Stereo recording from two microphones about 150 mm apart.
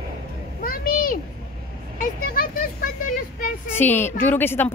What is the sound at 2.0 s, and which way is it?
Vehicle, 75° left (ahead or behind).